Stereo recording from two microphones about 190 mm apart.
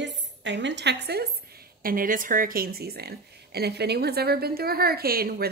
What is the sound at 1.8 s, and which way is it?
Speech, 45° right (ahead or behind).